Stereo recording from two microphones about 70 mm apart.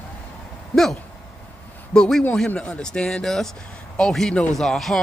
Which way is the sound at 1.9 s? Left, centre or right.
Centre.